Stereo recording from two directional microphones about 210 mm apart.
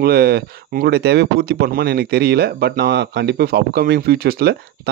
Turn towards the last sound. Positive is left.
turn(degrees=-45)  # may be behind; listen again after turning